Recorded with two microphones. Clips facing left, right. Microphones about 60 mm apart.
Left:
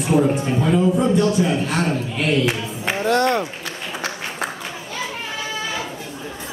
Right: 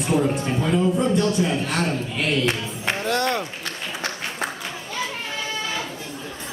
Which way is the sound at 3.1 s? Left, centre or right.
Centre.